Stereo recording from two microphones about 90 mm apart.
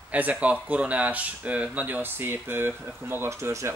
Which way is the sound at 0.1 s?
15° right (ahead or behind).